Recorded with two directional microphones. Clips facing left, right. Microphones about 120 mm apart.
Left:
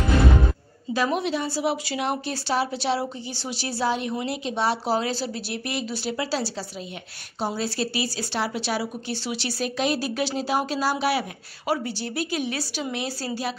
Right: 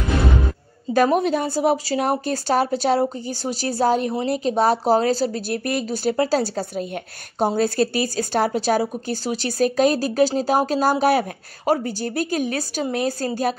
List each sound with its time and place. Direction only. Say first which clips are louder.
0.9 s a woman's voice: right 7 dB; 45° right (ahead or behind)